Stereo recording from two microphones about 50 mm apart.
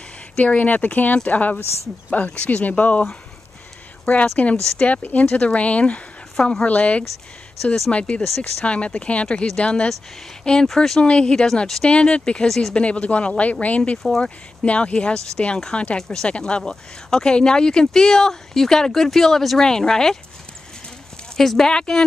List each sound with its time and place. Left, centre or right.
0.4 s speech: left
6.3 s speech: centre
6.6 s speech: left
7.6 s speech: centre
7.9 s speech: left; by 11.0 s centre
11.0 s speech: left
11.6 s speech: centre
11.9 s speech: centre
12.4 s speech: centre
12.7 s speech: left
16.0 s speech: centre
21.4 s speech: centre